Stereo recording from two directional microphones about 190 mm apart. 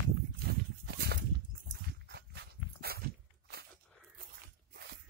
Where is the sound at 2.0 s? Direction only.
60° right (ahead or behind).